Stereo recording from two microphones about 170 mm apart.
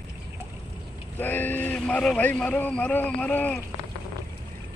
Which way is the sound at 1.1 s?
10° left (ahead or behind).